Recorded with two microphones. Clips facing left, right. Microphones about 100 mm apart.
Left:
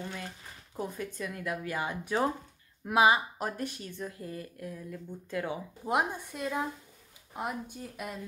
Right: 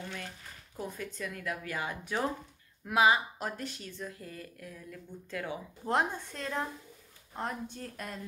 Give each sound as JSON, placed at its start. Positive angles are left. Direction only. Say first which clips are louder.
{"t": 0.7, "sound": "a woman's voice", "louder": "left 3 dB", "side_deg": 15}
{"t": 4.0, "sound": "a woman's voice", "louder": "left 4 dB", "side_deg": 25}